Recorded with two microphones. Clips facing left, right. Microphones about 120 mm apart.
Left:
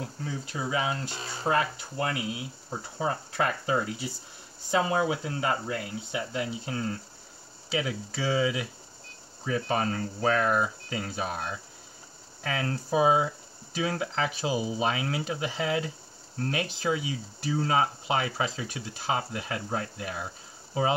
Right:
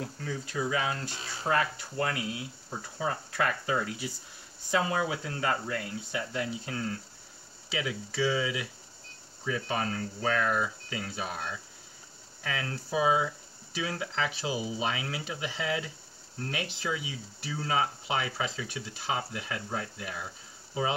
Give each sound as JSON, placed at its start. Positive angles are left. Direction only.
{"t": 0.2, "sound": "speech", "side_deg": 25}
{"t": 7.7, "sound": "speech", "side_deg": 40}